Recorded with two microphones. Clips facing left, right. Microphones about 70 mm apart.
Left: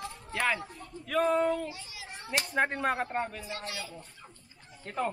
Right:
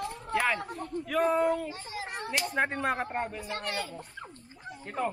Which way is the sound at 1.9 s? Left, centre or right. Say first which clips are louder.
Right 8 dB; right.